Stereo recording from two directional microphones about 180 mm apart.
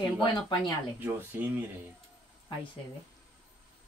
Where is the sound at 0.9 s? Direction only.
10° right (ahead or behind).